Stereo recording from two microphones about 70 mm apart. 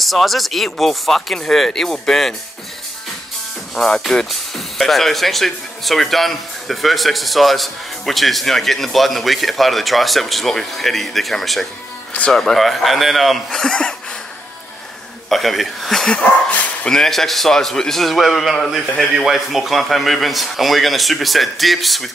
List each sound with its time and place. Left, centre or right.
0.0 s speech: centre
3.7 s speech: centre
15.2 s speech: centre
16.2 s dog: left
16.9 s speech: centre